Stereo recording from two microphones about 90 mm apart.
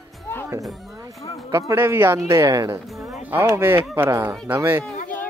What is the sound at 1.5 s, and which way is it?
Speech, 35° right (ahead or behind).